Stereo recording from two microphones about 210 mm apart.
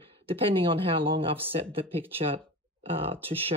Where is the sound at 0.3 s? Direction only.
25° right (ahead or behind).